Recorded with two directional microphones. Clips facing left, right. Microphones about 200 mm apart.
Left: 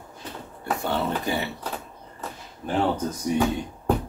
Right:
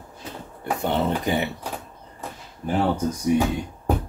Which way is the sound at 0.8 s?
20° right (ahead or behind).